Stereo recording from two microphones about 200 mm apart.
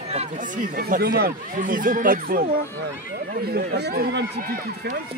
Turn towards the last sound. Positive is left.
turn(degrees=-45)  # may be behind; listen again after turning